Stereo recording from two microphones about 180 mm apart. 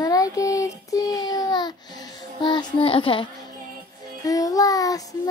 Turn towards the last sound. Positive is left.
turn(degrees=20)  # may be behind; listen again after turning